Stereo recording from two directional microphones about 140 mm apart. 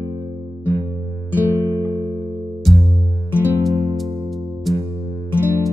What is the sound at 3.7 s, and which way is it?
Music, 30° right (ahead or behind).